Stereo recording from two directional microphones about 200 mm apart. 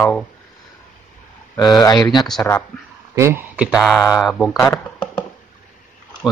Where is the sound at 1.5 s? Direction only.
20° left (ahead or behind).